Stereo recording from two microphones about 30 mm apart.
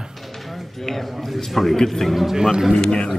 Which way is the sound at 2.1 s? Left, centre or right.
Centre.